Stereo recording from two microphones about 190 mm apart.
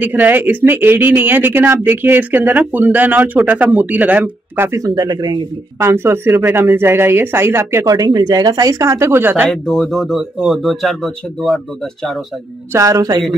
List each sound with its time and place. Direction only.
0.0 s speech: 10° right (ahead or behind)
5.8 s speech: 15° right (ahead or behind)
9.5 s speech: centre (ahead or behind)
12.7 s speech: 20° right (ahead or behind)